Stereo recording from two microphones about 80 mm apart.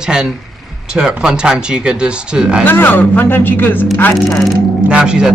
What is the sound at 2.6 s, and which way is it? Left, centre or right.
Speech, left.